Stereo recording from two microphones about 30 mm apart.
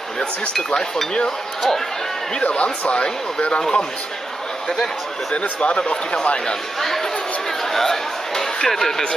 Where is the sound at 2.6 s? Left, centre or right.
Left.